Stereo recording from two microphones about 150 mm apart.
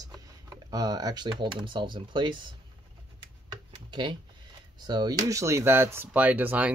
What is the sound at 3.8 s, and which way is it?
Speech, 30° right (ahead or behind).